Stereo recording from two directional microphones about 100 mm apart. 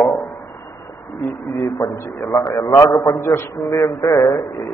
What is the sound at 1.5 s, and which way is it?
A man's voice, 30° left (ahead or behind).